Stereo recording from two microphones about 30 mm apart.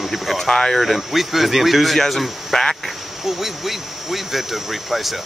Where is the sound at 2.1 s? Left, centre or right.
Centre.